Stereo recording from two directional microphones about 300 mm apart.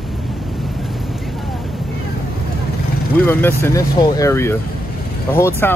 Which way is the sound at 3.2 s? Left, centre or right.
Centre.